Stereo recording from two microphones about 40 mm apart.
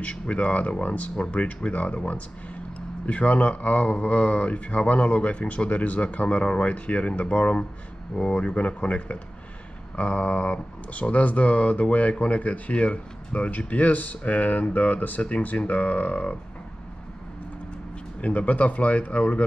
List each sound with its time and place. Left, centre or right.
0.0 s speech: left
18.2 s speech: left